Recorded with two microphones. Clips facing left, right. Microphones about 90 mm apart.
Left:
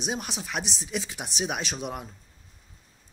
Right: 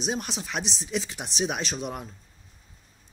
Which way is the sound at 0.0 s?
5° left (ahead or behind).